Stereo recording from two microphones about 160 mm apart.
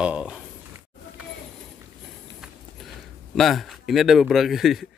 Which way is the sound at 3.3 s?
Centre (ahead or behind).